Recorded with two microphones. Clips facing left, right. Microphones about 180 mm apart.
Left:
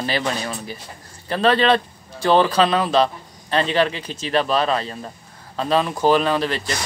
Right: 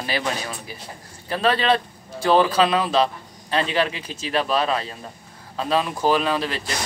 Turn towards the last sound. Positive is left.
turn(degrees=-5)  # may be behind; listen again after turning